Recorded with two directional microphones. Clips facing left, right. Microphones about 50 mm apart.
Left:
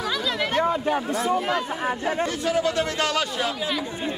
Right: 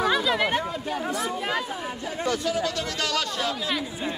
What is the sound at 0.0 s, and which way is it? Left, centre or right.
Chatter, centre.